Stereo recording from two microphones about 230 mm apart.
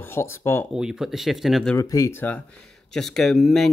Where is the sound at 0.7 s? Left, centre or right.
Centre.